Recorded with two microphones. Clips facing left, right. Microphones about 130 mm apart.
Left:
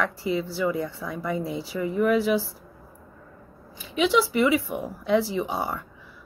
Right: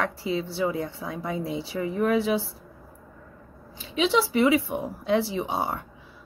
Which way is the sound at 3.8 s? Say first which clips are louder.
Left 1 dB; 25° right (ahead or behind).